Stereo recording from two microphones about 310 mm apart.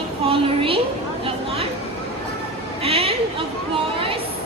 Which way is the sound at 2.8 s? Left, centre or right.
Centre.